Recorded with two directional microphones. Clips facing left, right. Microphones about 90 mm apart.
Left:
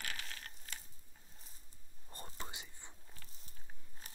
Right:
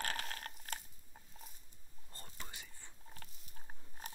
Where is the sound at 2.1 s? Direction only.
20° left (ahead or behind).